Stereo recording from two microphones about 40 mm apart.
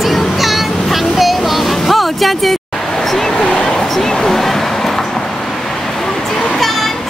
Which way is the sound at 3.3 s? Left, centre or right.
Left.